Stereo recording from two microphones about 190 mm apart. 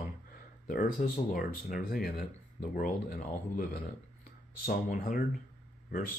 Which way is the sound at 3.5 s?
45° left (ahead or behind).